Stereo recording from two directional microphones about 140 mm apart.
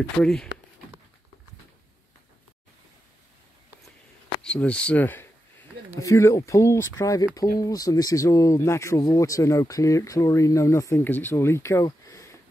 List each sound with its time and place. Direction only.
0.2 s speech: 5° left (ahead or behind)
4.4 s speech: 10° left (ahead or behind); by 12.4 s 25° left (ahead or behind)